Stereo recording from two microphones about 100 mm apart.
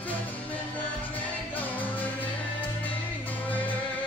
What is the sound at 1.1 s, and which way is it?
Music, 15° left (ahead or behind).